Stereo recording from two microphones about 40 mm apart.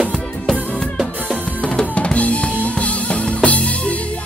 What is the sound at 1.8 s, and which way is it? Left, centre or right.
Drum, left.